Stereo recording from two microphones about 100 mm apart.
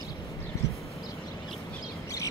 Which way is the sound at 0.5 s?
30° left (ahead or behind).